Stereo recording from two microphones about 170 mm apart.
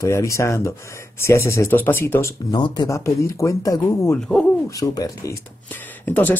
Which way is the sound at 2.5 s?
25° left (ahead or behind).